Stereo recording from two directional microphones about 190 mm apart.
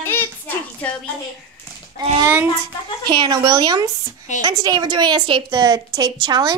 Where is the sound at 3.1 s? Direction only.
20° right (ahead or behind).